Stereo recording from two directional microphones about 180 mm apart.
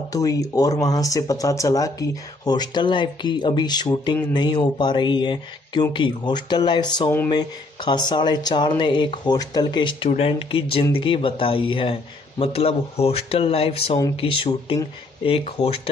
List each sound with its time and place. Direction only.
0.1 s speech: 20° left (ahead or behind)